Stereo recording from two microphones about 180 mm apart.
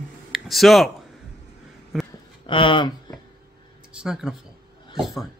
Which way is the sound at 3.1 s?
25° left (ahead or behind).